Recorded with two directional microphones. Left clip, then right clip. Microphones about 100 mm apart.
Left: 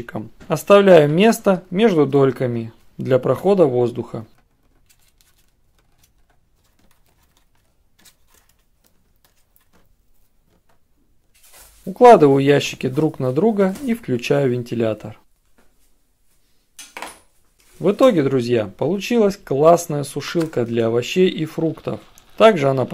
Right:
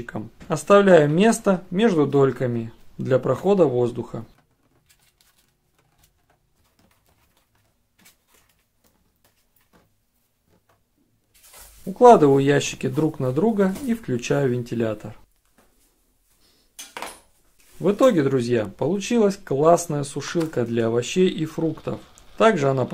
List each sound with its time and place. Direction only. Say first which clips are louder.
0.0 s speech: left 3 dB; 15° left (ahead or behind)
11.9 s speech: left 3 dB; 15° left (ahead or behind)
17.7 s speech: left 3 dB; 15° left (ahead or behind)